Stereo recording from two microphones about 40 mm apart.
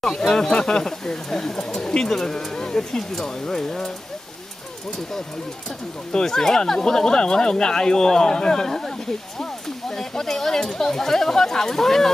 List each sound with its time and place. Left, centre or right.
0.0 s speech: centre
1.6 s speech: left
6.1 s speech: centre